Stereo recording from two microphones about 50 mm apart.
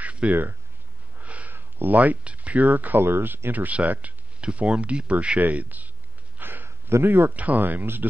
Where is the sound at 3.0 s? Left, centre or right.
Right.